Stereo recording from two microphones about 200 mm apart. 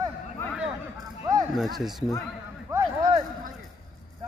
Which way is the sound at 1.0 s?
20° right (ahead or behind).